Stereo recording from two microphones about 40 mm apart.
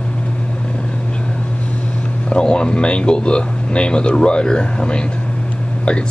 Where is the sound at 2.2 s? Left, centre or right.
Left.